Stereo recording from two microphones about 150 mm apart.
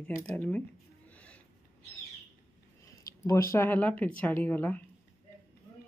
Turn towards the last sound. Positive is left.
turn(degrees=10)  # may be behind; listen again after turning